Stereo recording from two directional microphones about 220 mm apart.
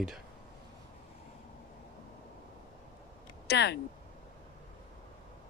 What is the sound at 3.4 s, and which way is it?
Speech, 50° left (ahead or behind).